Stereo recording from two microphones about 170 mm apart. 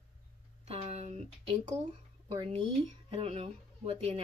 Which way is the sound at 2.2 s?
35° right (ahead or behind).